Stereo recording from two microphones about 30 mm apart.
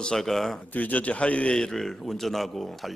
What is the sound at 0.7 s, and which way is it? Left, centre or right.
Speech, left.